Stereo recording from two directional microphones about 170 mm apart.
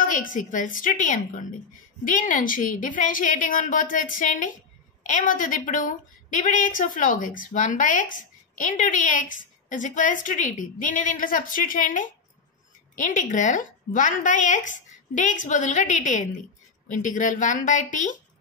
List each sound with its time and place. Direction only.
0.0 s a woman's voice: 50° left (ahead or behind)